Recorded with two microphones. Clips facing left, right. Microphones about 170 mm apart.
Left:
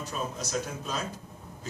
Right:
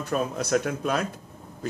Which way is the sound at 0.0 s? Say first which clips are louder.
Right 8 dB; 60° right (ahead or behind).